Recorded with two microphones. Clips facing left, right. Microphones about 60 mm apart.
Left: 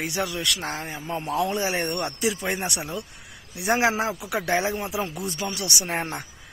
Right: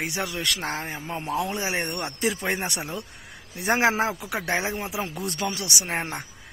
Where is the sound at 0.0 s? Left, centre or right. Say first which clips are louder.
Left 1 dB; right.